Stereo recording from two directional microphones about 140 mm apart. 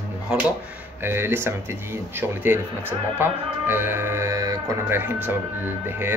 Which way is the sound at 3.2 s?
15° right (ahead or behind).